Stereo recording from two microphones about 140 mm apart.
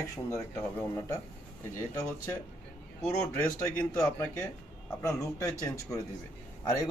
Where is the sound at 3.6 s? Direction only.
20° left (ahead or behind).